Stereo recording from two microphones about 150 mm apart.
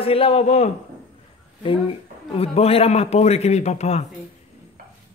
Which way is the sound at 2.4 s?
40° left (ahead or behind).